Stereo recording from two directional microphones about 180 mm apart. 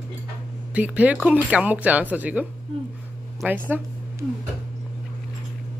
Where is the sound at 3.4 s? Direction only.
10° right (ahead or behind).